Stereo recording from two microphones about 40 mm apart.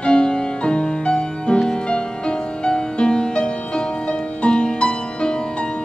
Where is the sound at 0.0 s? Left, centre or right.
Left.